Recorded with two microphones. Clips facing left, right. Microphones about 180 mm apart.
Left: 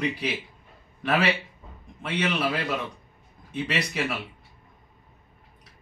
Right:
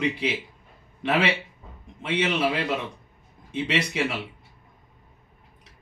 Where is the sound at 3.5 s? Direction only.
25° right (ahead or behind).